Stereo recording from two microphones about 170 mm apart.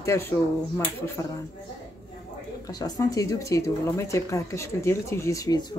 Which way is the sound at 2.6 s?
20° left (ahead or behind).